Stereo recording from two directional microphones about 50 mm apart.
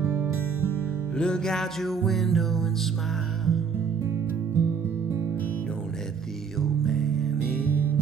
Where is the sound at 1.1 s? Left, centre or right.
Centre.